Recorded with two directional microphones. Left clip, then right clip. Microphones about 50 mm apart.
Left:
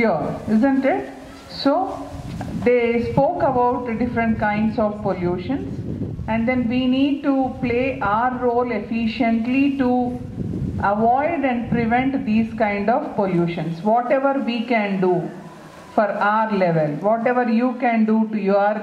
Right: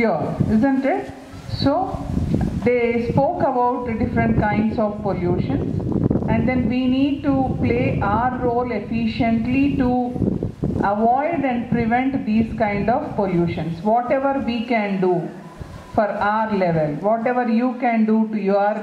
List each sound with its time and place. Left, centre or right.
0.0 s a woman's voice: left